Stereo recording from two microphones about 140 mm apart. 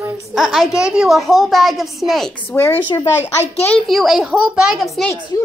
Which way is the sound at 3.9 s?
Centre (ahead or behind).